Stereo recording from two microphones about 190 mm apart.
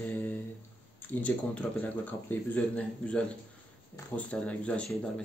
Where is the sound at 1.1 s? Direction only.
5° left (ahead or behind).